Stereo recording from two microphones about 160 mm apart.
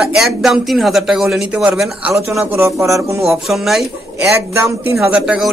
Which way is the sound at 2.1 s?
15° right (ahead or behind).